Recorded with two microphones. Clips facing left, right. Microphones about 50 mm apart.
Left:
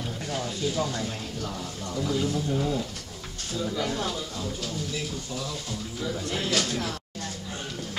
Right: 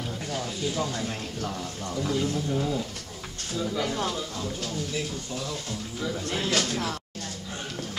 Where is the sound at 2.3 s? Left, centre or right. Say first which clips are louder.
Even; centre.